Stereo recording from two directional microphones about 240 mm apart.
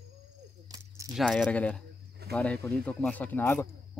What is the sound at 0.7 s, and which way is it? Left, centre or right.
Cricket, centre.